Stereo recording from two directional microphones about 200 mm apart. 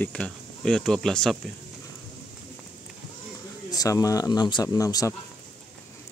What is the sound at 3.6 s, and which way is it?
Speech, 15° left (ahead or behind).